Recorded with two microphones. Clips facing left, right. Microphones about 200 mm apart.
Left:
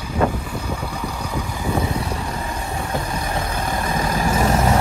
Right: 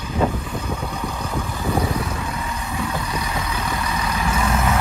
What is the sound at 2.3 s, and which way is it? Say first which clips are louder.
Vehicle: left 1 dB; 50° left (ahead or behind).